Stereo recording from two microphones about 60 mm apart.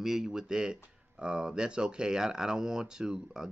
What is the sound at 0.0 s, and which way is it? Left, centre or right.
Speech, centre.